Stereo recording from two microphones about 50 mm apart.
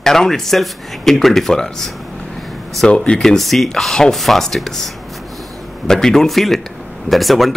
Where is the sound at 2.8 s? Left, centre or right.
Left.